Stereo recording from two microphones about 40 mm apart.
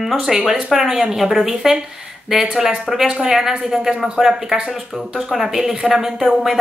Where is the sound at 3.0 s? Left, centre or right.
Centre.